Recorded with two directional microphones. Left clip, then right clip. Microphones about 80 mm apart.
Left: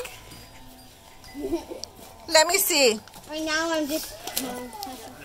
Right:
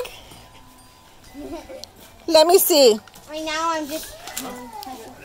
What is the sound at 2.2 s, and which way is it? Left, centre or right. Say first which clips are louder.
Speech: right 6 dB; right.